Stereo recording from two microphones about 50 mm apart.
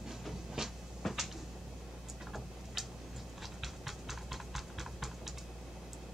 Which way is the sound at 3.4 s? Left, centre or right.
Centre.